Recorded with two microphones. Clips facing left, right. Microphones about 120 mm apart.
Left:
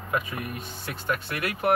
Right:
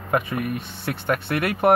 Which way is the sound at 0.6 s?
65° right (ahead or behind).